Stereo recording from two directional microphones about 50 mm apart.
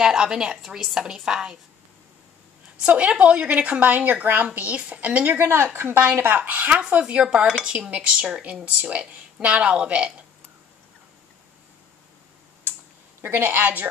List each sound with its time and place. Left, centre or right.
0.0 s a woman's voice: centre
2.8 s speech: right
5.4 s a woman's voice: right
7.0 s speech: right
13.2 s a woman's voice: right
13.6 s speech: right